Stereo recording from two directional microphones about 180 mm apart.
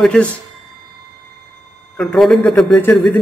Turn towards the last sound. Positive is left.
turn(degrees=5)  # may be behind; listen again after turning